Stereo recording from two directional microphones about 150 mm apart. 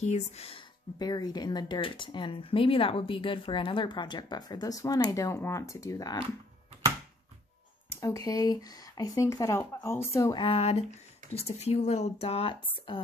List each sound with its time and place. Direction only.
0.0 s speech: 45° left (ahead or behind); by 6.1 s 25° left (ahead or behind)
8.0 s speech: 25° left (ahead or behind)
10.3 s speech: 35° left (ahead or behind)